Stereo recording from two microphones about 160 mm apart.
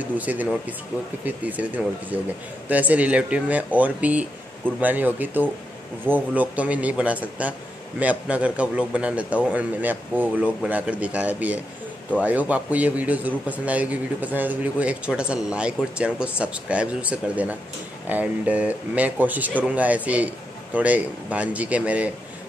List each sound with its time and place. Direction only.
0.2 s a man's voice: 10° right (ahead or behind)